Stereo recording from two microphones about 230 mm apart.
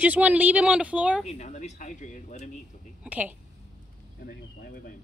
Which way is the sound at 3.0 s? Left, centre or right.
Centre.